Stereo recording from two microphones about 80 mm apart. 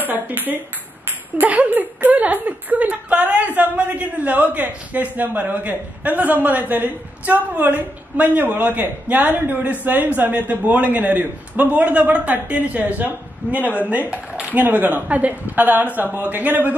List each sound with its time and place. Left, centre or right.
0.0 s a woman's voice: right